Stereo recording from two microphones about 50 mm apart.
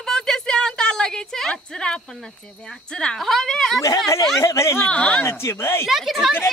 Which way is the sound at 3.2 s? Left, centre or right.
Centre.